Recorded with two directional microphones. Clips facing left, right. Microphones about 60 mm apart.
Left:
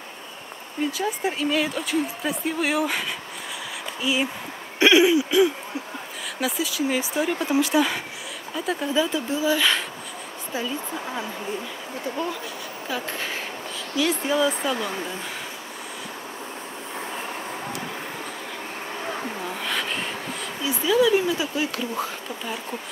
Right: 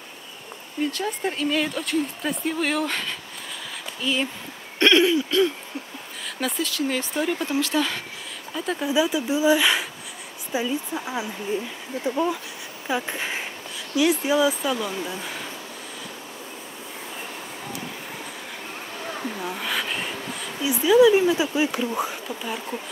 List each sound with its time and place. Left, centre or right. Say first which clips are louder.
0.9 s a woman's voice: left 1 dB; centre
4.7 s a sound: left 1 dB; centre
6.4 s speech: left 1 dB; centre
8.5 s a woman's voice: even; centre
8.9 s a woman's voice: right 3 dB; centre
19.4 s a sound: right 1 dB; centre
20.8 s speech: right 4 dB; centre
22.4 s a woman's voice: right 1 dB; centre